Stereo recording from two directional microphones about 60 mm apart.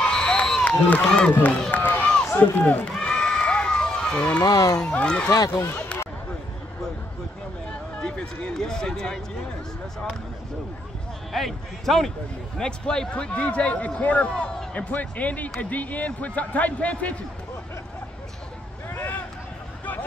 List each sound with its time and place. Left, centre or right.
0.0 s a sound: centre
0.7 s a man's voice: left
1.0 s speech: centre
1.7 s run: left
2.3 s a man's voice: left
3.0 s run: centre
4.4 s speech: left
4.7 s speech: centre
8.0 s speech: centre
11.3 s a man's voice: centre; by 17.2 s left
18.9 s vehicle: left
19.8 s a sound: left